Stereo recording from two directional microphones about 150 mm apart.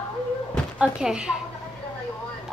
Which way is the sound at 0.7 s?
5° right (ahead or behind).